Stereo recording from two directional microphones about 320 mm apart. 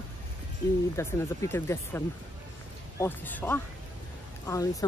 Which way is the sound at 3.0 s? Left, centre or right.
Centre.